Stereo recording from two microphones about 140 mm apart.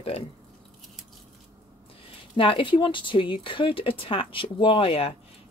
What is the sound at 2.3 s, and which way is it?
Speech, 40° left (ahead or behind).